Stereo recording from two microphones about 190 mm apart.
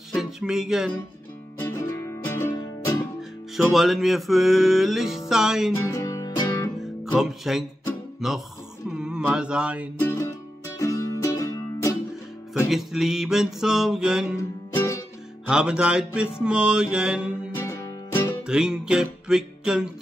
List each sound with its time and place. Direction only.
0.1 s music: centre (ahead or behind)
1.6 s music: 15° left (ahead or behind)
3.2 s music: centre (ahead or behind)
5.9 s music: 20° left (ahead or behind)
7.2 s music: centre (ahead or behind)
8.9 s mantra: 5° right (ahead or behind)
9.9 s music: 15° left (ahead or behind)
12.6 s music: centre (ahead or behind)
14.7 s music: 10° left (ahead or behind)
15.4 s music: 5° right (ahead or behind)
17.6 s music: 15° left (ahead or behind)
18.5 s music: 5° right (ahead or behind)